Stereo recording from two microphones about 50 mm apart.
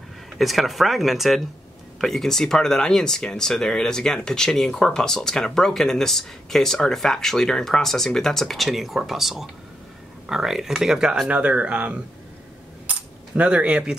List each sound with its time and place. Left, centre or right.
0.4 s speech: centre
11.2 s speech: right
13.4 s speech: right